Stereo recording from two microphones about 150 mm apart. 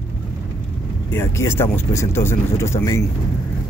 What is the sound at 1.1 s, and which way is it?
Speech, 15° left (ahead or behind).